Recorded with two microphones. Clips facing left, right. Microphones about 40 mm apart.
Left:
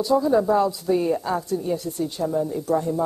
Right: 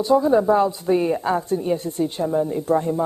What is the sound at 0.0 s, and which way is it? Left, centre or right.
A woman's voice, right.